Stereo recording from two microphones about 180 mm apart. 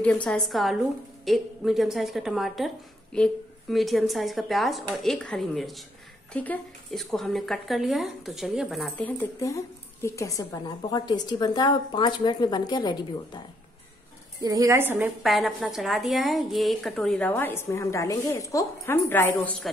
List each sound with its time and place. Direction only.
0.0 s a woman's voice: 5° left (ahead or behind); by 13.4 s 25° left (ahead or behind)
14.4 s a woman's voice: 20° right (ahead or behind)
15.2 s a woman's voice: centre (ahead or behind)